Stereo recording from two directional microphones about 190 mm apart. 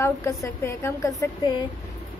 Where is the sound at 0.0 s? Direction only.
15° left (ahead or behind).